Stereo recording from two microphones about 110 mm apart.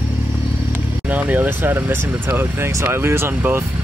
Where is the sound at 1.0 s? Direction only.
15° right (ahead or behind).